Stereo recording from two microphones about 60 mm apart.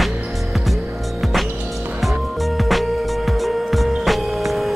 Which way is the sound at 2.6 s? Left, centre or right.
Centre.